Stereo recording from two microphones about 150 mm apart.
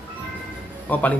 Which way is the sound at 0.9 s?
10° left (ahead or behind).